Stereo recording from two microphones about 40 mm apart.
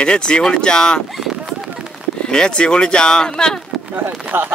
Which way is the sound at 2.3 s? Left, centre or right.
Left.